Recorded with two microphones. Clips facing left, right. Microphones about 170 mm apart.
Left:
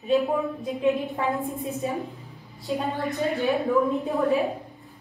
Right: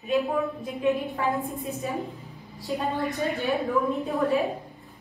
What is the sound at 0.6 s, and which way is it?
Speech, 20° left (ahead or behind).